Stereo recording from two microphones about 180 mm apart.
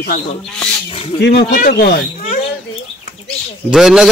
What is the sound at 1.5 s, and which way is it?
Speech, 55° left (ahead or behind).